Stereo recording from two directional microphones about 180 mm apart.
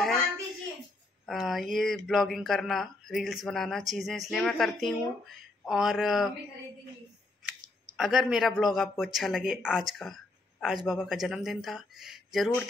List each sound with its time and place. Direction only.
1.2 s a man's voice: centre (ahead or behind)
8.0 s a man's voice: centre (ahead or behind)